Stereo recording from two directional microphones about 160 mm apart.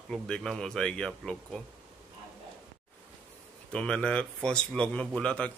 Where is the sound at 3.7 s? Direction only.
5° left (ahead or behind).